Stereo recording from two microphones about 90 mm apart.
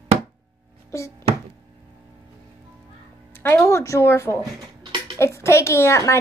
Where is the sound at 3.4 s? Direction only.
30° left (ahead or behind).